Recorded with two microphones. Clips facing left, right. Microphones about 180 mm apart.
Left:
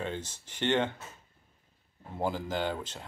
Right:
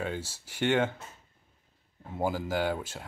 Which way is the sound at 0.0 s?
10° right (ahead or behind).